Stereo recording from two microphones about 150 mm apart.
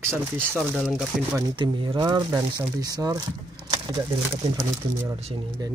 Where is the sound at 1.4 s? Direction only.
30° right (ahead or behind).